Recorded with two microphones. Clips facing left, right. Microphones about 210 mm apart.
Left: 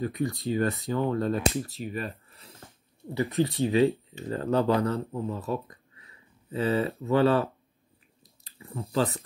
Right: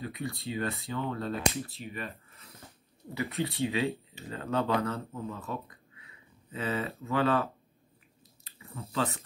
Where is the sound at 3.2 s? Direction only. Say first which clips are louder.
Left 6 dB; 35° left (ahead or behind).